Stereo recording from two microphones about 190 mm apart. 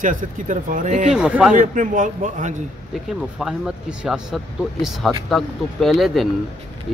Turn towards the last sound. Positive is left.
turn(degrees=0)  # may be behind; listen again after turning